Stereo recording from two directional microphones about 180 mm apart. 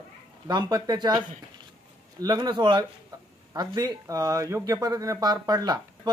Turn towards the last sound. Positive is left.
turn(degrees=-20)  # may be behind; listen again after turning